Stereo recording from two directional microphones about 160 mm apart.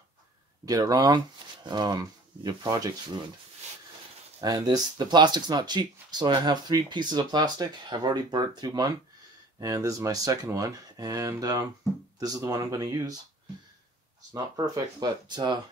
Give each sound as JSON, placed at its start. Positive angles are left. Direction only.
{"t": 0.7, "sound": "speech", "side_deg": -20}
{"t": 4.4, "sound": "speech", "side_deg": -25}
{"t": 14.3, "sound": "speech", "side_deg": -25}